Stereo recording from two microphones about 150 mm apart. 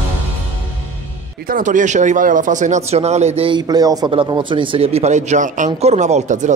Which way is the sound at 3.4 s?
30° right (ahead or behind).